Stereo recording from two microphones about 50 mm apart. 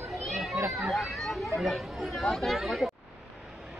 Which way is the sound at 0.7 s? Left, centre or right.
Centre.